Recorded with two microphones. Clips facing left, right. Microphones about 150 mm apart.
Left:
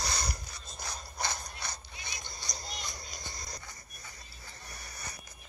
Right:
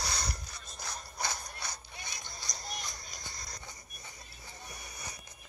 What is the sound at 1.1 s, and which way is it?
Ratchet, 10° right (ahead or behind).